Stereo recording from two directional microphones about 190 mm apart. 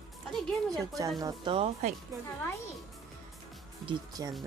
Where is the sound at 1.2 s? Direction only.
25° right (ahead or behind).